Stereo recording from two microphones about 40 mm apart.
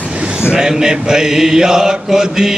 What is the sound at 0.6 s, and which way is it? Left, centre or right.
Mantra, centre.